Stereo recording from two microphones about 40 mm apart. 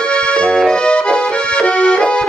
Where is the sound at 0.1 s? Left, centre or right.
Left.